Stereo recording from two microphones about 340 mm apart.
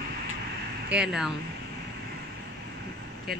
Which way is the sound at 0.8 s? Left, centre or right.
Centre.